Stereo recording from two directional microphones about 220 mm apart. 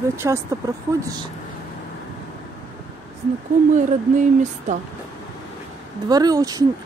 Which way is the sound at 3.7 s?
35° right (ahead or behind).